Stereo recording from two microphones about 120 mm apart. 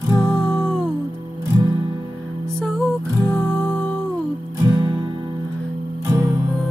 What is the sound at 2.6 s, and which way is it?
Music, 5° left (ahead or behind).